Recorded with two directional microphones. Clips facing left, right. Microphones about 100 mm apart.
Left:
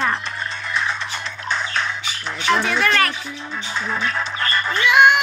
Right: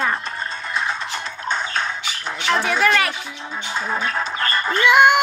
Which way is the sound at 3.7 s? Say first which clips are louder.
Right 1 dB; 40° right (ahead or behind).